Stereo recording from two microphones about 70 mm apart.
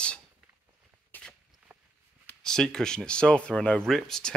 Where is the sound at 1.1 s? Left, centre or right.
Left.